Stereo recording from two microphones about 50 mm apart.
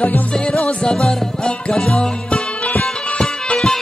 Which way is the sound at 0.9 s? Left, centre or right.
Centre.